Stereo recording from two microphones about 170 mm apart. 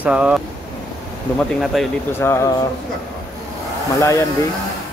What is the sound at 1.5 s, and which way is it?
Speech, centre (ahead or behind).